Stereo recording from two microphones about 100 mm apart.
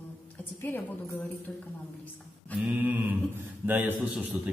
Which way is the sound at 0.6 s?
20° left (ahead or behind).